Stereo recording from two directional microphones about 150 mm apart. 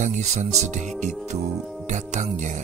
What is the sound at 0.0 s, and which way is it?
Speech, 55° right (ahead or behind).